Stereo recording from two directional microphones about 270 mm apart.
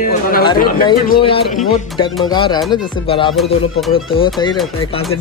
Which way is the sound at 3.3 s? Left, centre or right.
Centre.